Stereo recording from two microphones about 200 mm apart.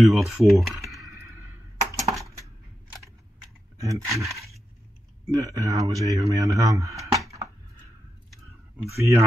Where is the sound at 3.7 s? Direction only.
15° right (ahead or behind).